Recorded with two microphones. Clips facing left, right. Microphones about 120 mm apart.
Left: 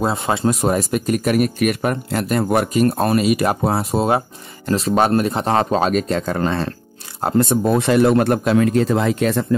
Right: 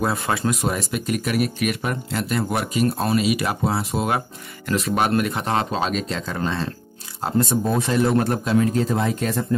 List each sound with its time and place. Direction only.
0.0 s speech: 25° left (ahead or behind)
0.6 s speech: 45° left (ahead or behind)
3.9 s speech: 30° left (ahead or behind); by 9.6 s 75° left (ahead or behind)